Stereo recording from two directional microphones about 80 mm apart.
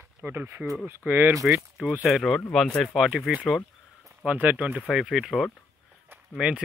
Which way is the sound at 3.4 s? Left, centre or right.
Centre.